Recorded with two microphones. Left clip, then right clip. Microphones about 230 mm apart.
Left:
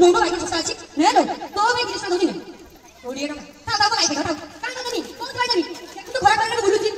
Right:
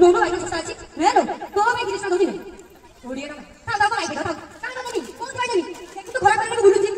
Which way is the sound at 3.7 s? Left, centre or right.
Left.